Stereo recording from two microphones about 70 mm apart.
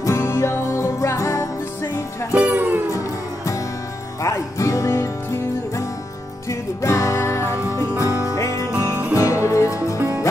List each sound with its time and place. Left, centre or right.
0.0 s music: left
2.3 s music: right
2.9 s music: left
8.7 s music: right
9.1 s music: left
9.9 s music: right